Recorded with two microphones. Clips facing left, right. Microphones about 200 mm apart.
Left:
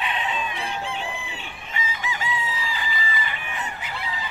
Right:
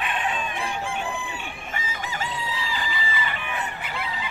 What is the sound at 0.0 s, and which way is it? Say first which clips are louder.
Chicken: even; 50° right (ahead or behind).